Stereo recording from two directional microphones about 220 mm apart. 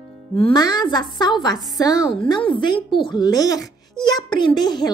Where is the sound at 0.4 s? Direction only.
20° left (ahead or behind).